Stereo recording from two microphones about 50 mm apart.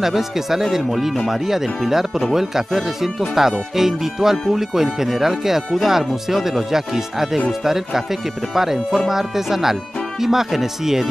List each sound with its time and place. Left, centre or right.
0.0 s speech: centre